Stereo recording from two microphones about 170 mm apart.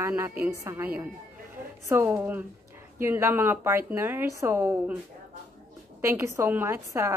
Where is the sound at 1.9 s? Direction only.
15° right (ahead or behind).